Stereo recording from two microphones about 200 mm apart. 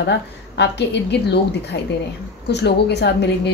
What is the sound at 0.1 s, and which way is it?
A woman's voice, 60° left (ahead or behind).